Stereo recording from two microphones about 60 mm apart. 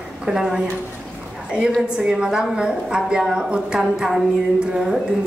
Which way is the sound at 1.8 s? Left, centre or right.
Centre.